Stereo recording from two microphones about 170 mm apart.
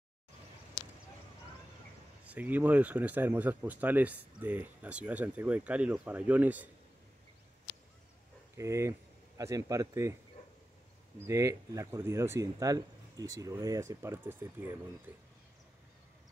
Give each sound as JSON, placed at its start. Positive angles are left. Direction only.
{"t": 2.2, "sound": "speech", "side_deg": -10}
{"t": 8.5, "sound": "speech", "side_deg": -15}
{"t": 11.2, "sound": "speech", "side_deg": -20}